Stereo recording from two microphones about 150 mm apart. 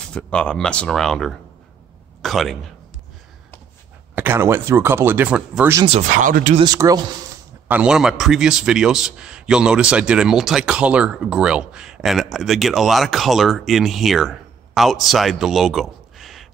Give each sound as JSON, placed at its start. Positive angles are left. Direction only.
{"t": 0.0, "sound": "a man's voice", "side_deg": 5}
{"t": 4.1, "sound": "speech", "side_deg": -15}
{"t": 5.9, "sound": "speech", "side_deg": -50}
{"t": 6.6, "sound": "a man's voice", "side_deg": -25}
{"t": 7.6, "sound": "a man's voice", "side_deg": -10}